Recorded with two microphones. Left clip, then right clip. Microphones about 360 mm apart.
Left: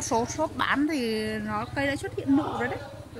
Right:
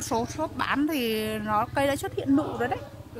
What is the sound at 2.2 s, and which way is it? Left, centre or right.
Speech, right.